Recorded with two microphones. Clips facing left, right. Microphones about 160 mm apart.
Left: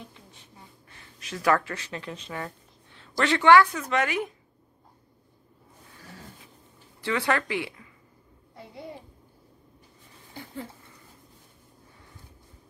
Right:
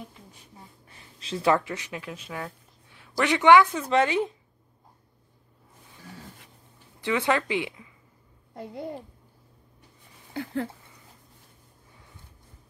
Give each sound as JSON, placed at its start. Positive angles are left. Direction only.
{"t": 0.1, "sound": "a sound", "side_deg": -5}
{"t": 1.2, "sound": "speech", "side_deg": -25}
{"t": 3.8, "sound": "a woman's voice", "side_deg": -30}
{"t": 7.0, "sound": "a woman's voice", "side_deg": -20}
{"t": 8.5, "sound": "a child's voice", "side_deg": -45}
{"t": 10.3, "sound": "speech", "side_deg": -75}